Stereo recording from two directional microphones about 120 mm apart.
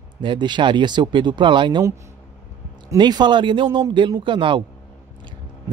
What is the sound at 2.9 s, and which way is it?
Speech, 35° right (ahead or behind).